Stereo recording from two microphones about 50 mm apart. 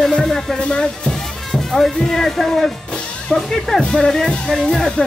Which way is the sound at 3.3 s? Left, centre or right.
Centre.